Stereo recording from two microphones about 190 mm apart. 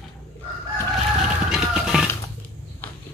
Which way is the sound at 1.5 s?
5° right (ahead or behind).